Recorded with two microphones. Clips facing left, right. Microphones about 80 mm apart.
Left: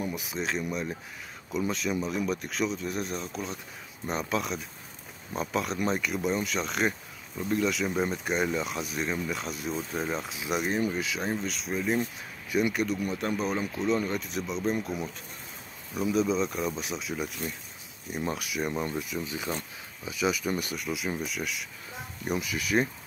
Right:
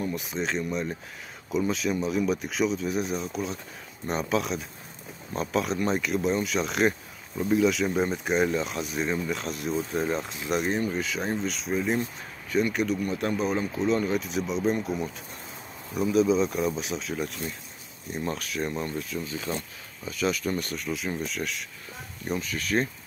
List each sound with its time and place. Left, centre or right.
0.0 s speech: centre
12.4 s speech: centre